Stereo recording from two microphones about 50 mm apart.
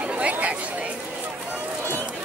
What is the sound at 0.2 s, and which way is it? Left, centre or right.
Chatter, right.